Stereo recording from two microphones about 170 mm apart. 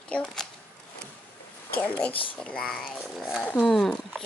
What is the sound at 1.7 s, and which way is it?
Speech, 10° left (ahead or behind).